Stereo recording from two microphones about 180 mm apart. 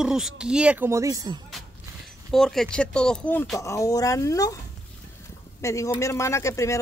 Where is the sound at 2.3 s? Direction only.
Centre (ahead or behind); by 4.6 s 20° left (ahead or behind).